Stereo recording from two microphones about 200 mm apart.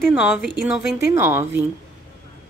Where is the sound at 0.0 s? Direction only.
Centre (ahead or behind).